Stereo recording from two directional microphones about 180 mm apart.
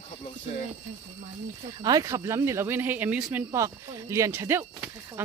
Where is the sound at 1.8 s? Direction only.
20° right (ahead or behind).